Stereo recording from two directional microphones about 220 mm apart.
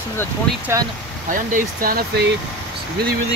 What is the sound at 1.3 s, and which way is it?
Speech, 40° right (ahead or behind).